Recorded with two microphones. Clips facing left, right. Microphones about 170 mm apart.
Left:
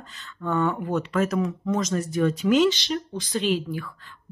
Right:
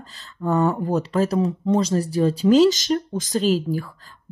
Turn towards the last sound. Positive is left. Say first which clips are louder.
# right 4 dB
turn(degrees=-40)  # may be behind; listen again after turning